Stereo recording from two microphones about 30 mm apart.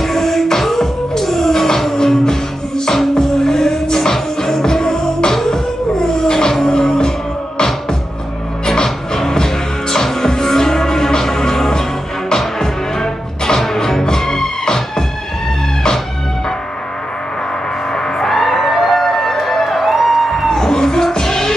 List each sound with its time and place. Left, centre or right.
0.0 s music: centre
8.8 s music: centre
17.9 s music: left
18.3 s music: centre
18.9 s music: centre
19.6 s music: centre
20.4 s music: centre